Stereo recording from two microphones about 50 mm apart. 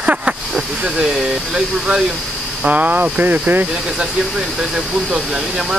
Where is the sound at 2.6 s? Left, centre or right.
Right.